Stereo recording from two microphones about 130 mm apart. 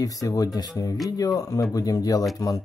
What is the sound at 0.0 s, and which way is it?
Speech, 25° left (ahead or behind).